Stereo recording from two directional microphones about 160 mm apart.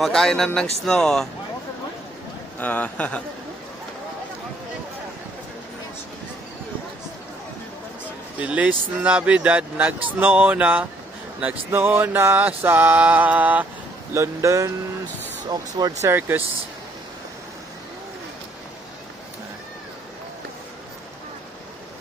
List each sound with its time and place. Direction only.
0.0 s speech: 5° left (ahead or behind)
2.6 s speech: 10° left (ahead or behind)
8.4 s speech: 10° right (ahead or behind)
15.8 s speech: 15° right (ahead or behind)